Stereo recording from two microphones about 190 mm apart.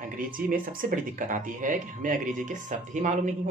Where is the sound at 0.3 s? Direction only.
50° right (ahead or behind).